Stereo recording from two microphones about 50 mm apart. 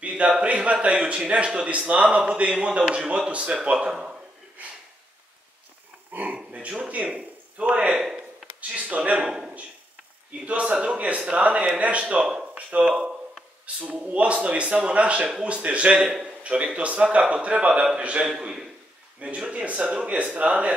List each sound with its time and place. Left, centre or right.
0.4 s a man's voice: right
6.1 s dog: right
7.2 s speech: right
8.0 s a sound: centre
8.5 s a man's voice: right
18.4 s a man's voice: centre